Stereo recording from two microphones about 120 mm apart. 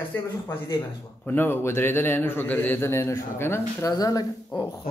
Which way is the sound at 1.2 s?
20° left (ahead or behind).